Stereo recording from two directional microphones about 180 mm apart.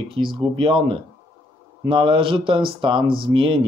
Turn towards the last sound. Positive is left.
turn(degrees=-30)  # may be behind; listen again after turning